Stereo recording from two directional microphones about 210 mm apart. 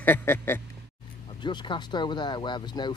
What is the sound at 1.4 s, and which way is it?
Speech, 20° left (ahead or behind).